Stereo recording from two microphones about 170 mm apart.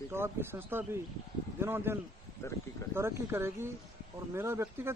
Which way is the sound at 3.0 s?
15° right (ahead or behind).